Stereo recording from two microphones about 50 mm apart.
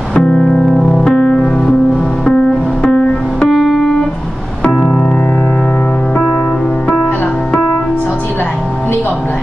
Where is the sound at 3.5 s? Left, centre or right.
Centre.